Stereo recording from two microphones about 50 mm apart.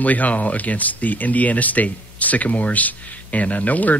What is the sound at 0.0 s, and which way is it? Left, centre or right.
Speech, left.